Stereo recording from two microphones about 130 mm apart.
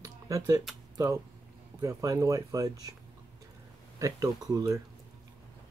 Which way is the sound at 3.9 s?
25° right (ahead or behind).